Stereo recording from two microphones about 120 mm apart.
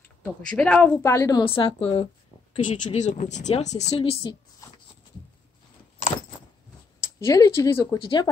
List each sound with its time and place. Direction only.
0.5 s a woman's voice: 10° left (ahead or behind)
1.0 s a woman's voice: 25° left (ahead or behind)
1.4 s a woman's voice: 50° left (ahead or behind); by 4.0 s 70° left (ahead or behind)
4.2 s speech: 35° left (ahead or behind)
7.0 s speech: 25° left (ahead or behind)
8.0 s a woman's voice: 45° left (ahead or behind)